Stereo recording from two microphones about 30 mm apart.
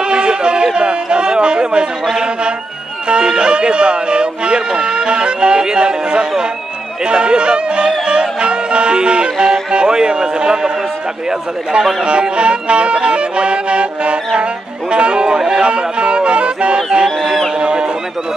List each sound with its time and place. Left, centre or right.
0.1 s a sound: right
2.0 s music: right
3.1 s speech: right
7.1 s music: right
12.0 s music: right
14.9 s speech: right
15.6 s speech: right
17.6 s a sound: right